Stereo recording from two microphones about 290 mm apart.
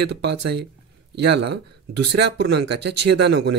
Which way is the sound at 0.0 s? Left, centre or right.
Right.